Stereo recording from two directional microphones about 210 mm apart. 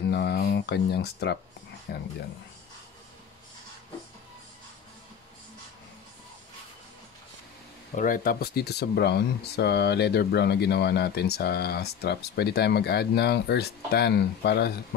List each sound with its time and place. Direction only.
0.1 s a sound: 50° left (ahead or behind)
1.9 s speech: 50° left (ahead or behind)
7.9 s speech: 40° left (ahead or behind)